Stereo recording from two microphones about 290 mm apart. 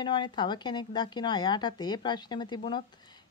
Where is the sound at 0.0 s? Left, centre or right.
Centre.